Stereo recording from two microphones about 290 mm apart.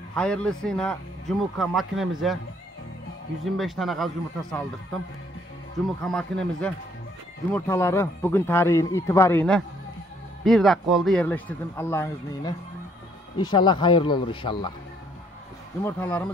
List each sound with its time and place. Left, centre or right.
0.1 s speech: centre
3.4 s speech: centre
6.0 s a man's voice: centre
15.8 s speech: centre